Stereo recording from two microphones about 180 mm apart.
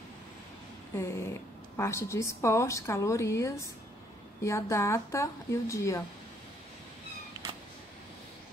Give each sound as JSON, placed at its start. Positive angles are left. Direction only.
{"t": 0.9, "sound": "a woman's voice", "side_deg": 15}